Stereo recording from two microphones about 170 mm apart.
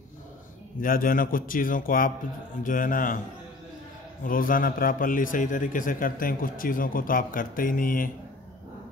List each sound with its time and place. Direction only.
0.7 s a man's voice: 55° left (ahead or behind)
4.2 s a man's voice: 55° left (ahead or behind)